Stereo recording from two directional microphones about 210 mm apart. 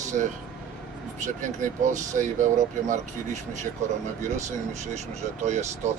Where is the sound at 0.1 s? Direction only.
40° right (ahead or behind).